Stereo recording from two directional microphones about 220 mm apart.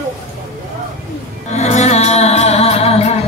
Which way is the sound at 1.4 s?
30° left (ahead or behind).